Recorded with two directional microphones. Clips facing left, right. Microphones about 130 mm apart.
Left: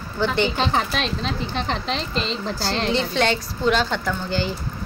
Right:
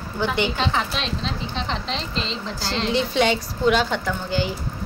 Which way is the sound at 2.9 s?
5° right (ahead or behind).